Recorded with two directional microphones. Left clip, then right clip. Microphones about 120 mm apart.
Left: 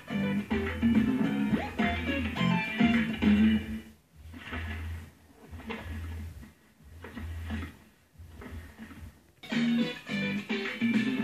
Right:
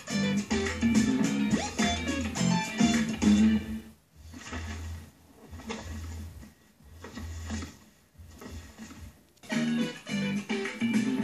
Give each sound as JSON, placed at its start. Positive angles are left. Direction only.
{"t": 0.1, "sound": "music", "side_deg": -35}
{"t": 7.0, "sound": "music", "side_deg": -35}
{"t": 9.5, "sound": "music", "side_deg": -25}